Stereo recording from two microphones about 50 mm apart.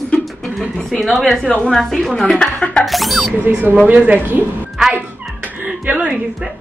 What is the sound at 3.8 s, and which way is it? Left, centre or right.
Speech, right.